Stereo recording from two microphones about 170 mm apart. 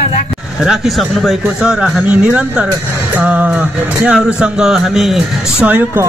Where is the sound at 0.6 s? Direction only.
Centre (ahead or behind).